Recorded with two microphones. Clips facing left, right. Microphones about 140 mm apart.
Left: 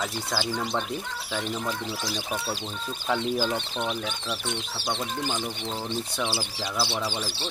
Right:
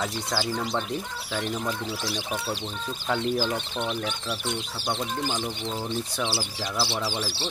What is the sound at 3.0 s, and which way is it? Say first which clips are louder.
Speech: even; centre (ahead or behind).